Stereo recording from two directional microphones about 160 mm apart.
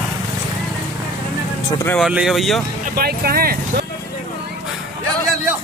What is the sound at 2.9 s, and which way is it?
Speech, 70° right (ahead or behind).